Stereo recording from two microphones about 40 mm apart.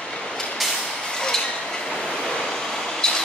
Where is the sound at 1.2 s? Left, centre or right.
Centre.